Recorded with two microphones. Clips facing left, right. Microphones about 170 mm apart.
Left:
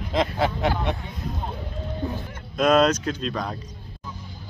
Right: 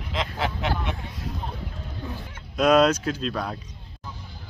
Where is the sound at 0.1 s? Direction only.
40° left (ahead or behind).